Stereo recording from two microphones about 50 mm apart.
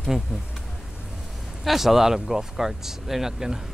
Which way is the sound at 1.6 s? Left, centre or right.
Centre.